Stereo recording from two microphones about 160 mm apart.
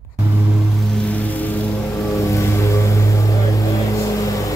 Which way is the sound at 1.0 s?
10° left (ahead or behind).